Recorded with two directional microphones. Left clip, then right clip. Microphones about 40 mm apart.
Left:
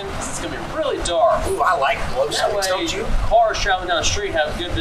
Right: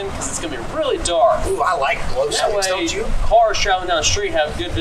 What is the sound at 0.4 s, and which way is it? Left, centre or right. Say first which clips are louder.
Speech: right 2 dB; right.